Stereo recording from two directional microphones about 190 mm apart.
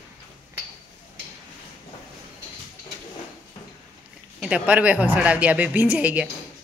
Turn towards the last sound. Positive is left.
turn(degrees=-10)  # may be behind; listen again after turning